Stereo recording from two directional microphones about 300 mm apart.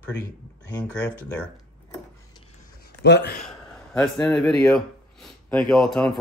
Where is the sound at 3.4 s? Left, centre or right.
Centre.